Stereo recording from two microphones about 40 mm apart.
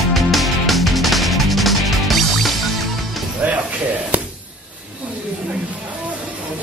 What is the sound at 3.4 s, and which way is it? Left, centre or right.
Music, right.